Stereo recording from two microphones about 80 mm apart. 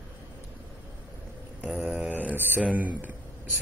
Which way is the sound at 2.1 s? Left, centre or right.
Right.